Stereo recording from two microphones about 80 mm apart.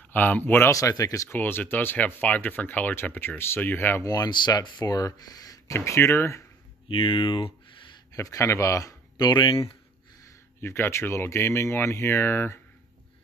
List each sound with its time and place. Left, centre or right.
0.1 s speech: left
0.7 s speech: left
1.3 s speech: left
4.0 s speech: left
5.7 s speech: left
6.9 s speech: left
8.1 s speech: left
10.6 s speech: left